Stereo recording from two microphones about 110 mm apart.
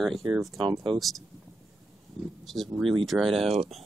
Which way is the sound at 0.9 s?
Centre (ahead or behind).